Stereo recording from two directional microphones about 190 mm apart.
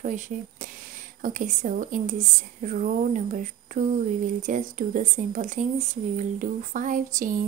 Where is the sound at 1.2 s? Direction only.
45° right (ahead or behind).